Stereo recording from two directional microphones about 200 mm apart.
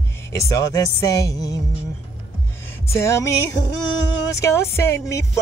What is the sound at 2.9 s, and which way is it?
Speech, 15° left (ahead or behind).